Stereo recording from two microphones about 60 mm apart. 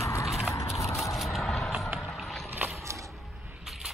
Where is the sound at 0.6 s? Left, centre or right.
Left.